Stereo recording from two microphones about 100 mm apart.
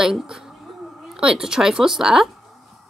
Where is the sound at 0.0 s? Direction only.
5° right (ahead or behind).